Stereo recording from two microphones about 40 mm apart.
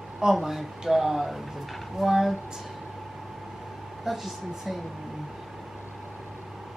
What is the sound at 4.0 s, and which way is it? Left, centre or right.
Speech, centre.